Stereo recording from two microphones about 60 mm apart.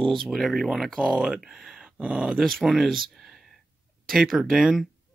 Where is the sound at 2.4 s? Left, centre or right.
Centre.